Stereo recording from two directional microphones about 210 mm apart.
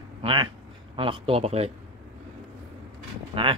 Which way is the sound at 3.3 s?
25° right (ahead or behind).